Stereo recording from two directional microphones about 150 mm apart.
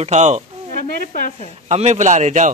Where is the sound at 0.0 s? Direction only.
50° right (ahead or behind).